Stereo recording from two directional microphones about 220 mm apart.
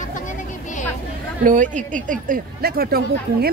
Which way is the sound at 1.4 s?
35° right (ahead or behind).